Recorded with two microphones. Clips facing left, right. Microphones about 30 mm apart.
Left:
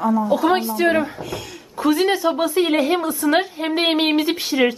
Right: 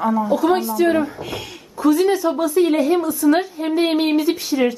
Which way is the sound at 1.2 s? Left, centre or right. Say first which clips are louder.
Right 1 dB; centre.